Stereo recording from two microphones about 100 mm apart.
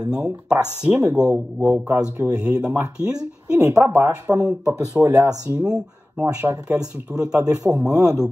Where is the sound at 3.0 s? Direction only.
40° right (ahead or behind).